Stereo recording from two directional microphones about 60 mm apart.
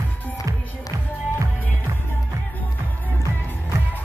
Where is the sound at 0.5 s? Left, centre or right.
Right.